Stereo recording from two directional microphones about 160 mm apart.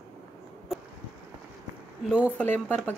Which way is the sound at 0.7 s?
Centre (ahead or behind).